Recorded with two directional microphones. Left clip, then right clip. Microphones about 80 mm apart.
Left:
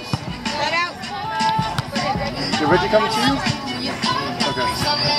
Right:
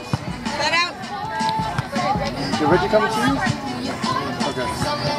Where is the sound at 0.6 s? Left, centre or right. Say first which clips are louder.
Right 1 dB; right.